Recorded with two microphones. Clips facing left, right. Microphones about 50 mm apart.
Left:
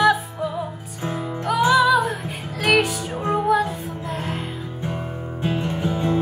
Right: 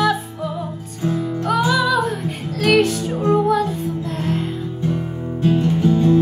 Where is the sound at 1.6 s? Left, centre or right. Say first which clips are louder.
Left 5 dB; centre.